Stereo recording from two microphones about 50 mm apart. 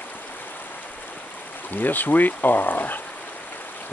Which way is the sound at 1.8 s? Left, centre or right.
Left.